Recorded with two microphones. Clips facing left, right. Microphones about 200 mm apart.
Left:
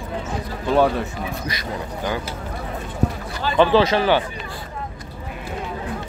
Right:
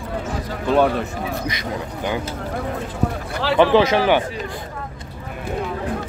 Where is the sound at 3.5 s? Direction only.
15° right (ahead or behind).